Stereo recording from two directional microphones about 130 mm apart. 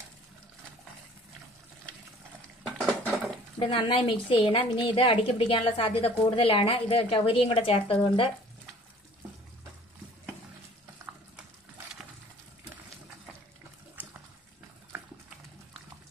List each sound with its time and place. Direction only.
2.6 s dishes: centre (ahead or behind)
3.5 s a woman's voice: 40° left (ahead or behind)
14.0 s water: 15° right (ahead or behind)